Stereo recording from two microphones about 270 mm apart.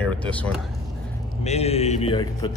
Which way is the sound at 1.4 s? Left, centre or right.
Left.